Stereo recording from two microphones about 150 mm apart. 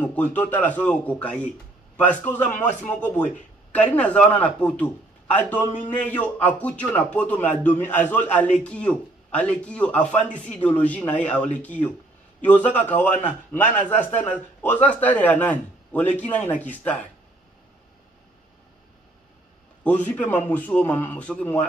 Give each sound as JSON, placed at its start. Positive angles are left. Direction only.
{"t": 0.0, "sound": "a man's voice", "side_deg": 10}
{"t": 19.8, "sound": "a man's voice", "side_deg": 10}